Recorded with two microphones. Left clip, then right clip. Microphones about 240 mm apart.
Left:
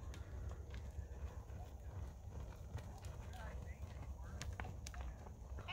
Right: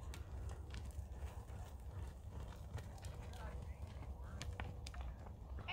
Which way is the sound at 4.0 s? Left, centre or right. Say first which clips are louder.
Right 1 dB; left.